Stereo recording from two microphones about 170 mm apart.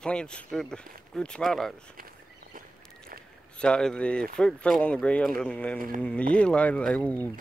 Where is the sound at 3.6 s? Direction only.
5° left (ahead or behind).